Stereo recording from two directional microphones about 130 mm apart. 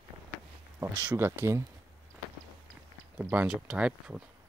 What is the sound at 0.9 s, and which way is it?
Speech, 30° right (ahead or behind).